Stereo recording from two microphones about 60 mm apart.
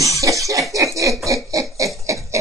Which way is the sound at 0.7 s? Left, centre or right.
Right.